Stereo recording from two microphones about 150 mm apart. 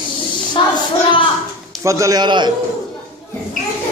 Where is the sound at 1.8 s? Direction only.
20° right (ahead or behind).